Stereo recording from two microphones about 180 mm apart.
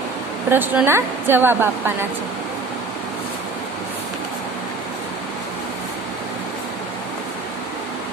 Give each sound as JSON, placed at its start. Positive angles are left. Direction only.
{"t": 0.5, "sound": "speech", "side_deg": -10}